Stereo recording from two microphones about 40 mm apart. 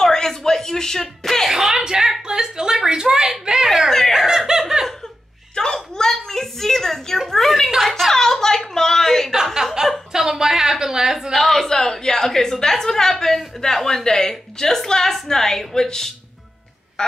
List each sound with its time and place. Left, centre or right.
0.0 s a woman's voice: centre
1.5 s a woman's voice: centre
4.1 s snicker: centre
5.6 s a sound: centre
9.3 s a sound: centre
10.1 s a woman's voice: centre
11.3 s a woman's voice: centre